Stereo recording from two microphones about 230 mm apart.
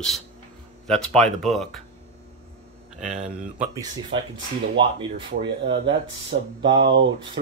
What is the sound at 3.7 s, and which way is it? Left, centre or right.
Speech, centre.